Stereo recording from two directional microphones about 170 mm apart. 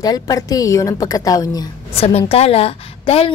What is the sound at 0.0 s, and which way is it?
A woman's voice, 20° left (ahead or behind).